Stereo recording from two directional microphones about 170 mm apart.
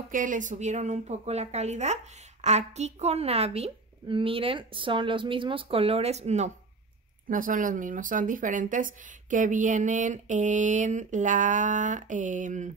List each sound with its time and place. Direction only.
0.1 s a woman's voice: 50° right (ahead or behind)
7.2 s speech: 55° right (ahead or behind)